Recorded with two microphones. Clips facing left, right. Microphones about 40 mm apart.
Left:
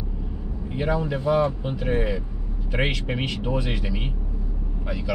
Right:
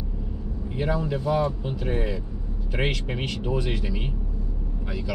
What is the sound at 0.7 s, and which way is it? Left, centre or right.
Speech, centre.